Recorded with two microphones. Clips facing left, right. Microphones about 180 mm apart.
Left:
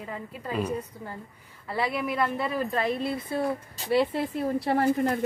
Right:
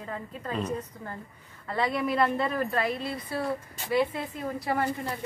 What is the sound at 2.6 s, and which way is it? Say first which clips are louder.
A woman's voice: left 1 dB; 20° left (ahead or behind).